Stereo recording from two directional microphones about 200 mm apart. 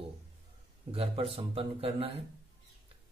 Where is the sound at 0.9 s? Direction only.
30° right (ahead or behind).